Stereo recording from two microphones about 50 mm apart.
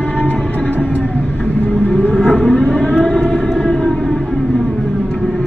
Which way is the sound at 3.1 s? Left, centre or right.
Centre.